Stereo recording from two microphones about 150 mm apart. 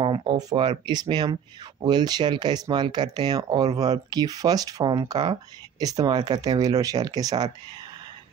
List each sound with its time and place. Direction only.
0.0 s speech: 30° right (ahead or behind)